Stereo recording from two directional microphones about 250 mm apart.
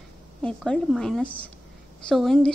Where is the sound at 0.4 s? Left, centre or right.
Centre.